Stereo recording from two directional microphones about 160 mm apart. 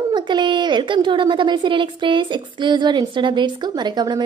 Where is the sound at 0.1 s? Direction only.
30° right (ahead or behind).